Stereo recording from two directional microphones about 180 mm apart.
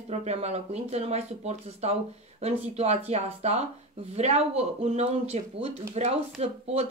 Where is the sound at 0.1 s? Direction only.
35° right (ahead or behind).